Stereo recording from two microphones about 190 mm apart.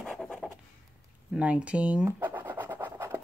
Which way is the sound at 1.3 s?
5° right (ahead or behind).